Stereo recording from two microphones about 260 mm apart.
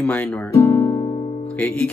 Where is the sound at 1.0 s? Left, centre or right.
Left.